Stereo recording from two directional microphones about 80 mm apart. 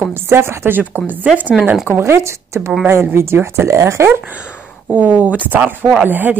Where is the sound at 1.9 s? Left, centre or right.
Right.